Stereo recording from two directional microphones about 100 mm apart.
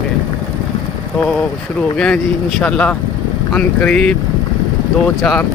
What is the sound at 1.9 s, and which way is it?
Speech, 10° left (ahead or behind).